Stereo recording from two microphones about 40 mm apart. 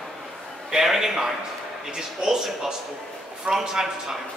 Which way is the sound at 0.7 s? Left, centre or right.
Centre.